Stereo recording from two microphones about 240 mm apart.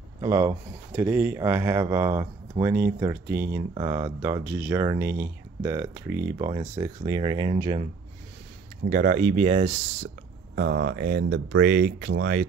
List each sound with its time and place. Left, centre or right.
0.2 s speech: centre
8.9 s speech: right
10.5 s speech: right